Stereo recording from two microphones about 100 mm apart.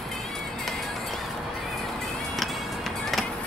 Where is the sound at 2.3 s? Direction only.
Centre (ahead or behind).